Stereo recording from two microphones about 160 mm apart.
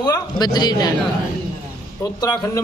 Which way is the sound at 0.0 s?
25° left (ahead or behind).